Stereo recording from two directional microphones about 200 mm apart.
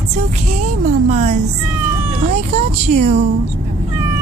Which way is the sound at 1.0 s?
35° right (ahead or behind).